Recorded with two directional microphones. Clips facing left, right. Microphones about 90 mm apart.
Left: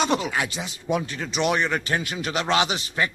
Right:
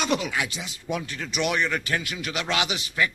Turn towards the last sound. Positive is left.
turn(degrees=35)  # may be behind; listen again after turning